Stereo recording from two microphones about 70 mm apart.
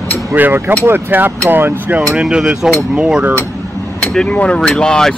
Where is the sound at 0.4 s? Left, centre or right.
Right.